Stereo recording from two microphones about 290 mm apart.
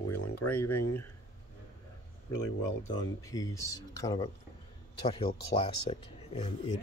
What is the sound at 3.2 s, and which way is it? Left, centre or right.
Speech, centre.